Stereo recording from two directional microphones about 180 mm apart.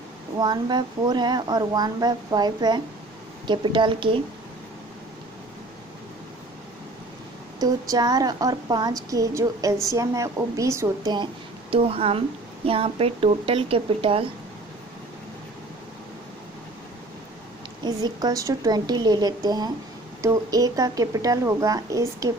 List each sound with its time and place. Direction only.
0.4 s speech: 25° right (ahead or behind)
7.6 s speech: 20° right (ahead or behind)
11.7 s speech: 30° right (ahead or behind)
17.8 s speech: 20° right (ahead or behind)